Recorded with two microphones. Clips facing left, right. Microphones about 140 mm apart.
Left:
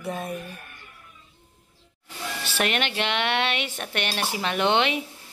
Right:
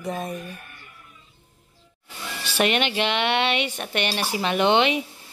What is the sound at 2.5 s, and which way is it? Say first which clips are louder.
Speech: right 4 dB; centre (ahead or behind).